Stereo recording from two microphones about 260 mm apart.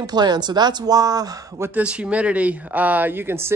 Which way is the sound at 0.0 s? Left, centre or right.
Centre.